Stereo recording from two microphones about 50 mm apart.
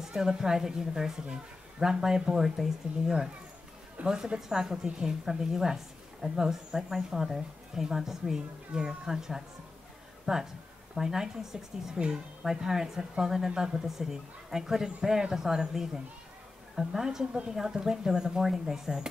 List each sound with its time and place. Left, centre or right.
0.0 s a woman's voice: centre
4.0 s a woman's voice: right
4.4 s a woman's voice: centre